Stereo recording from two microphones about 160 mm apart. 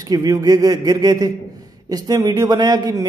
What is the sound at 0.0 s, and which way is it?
Speech, 25° right (ahead or behind).